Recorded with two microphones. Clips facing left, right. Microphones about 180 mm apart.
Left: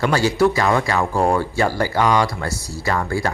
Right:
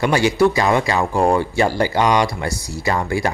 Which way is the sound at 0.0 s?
15° right (ahead or behind).